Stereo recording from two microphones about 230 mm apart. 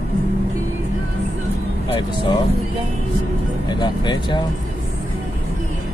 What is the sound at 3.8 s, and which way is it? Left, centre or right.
Speech, centre.